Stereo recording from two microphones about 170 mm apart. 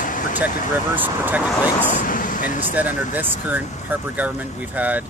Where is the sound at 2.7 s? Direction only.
10° right (ahead or behind).